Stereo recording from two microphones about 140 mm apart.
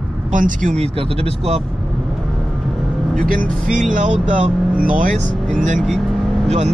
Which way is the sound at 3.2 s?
70° right (ahead or behind).